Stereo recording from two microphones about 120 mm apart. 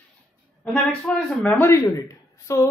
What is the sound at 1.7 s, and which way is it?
A man's voice, 25° left (ahead or behind).